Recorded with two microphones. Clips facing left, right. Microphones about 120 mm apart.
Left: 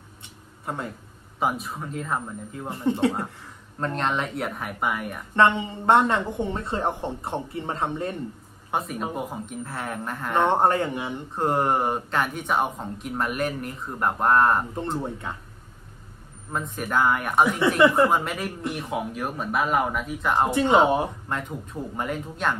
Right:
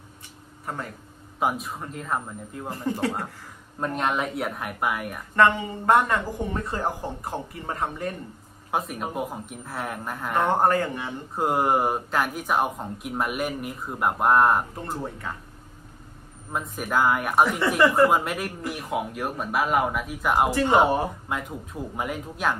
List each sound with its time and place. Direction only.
0.7 s speech: 25° left (ahead or behind)
1.4 s speech: centre (ahead or behind)
2.7 s speech: 20° left (ahead or behind)
3.8 s speech: 5° right (ahead or behind)
5.3 s speech: 25° left (ahead or behind)
8.7 s speech: centre (ahead or behind)
10.5 s speech: 25° left (ahead or behind)
11.3 s speech: 5° right (ahead or behind)
16.5 s speech: centre (ahead or behind)
17.8 s speech: 20° left (ahead or behind)
18.1 s speech: centre (ahead or behind)
20.5 s speech: 20° left (ahead or behind)
21.3 s speech: 5° right (ahead or behind)